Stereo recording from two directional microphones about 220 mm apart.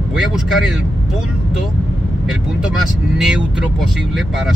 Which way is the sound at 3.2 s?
5° right (ahead or behind).